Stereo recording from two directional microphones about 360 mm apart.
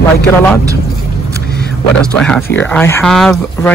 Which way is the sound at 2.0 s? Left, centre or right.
Centre.